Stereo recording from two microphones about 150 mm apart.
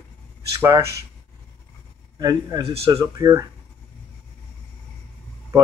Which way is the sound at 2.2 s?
25° right (ahead or behind).